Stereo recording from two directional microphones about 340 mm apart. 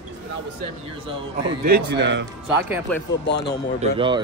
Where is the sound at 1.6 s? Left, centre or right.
Right.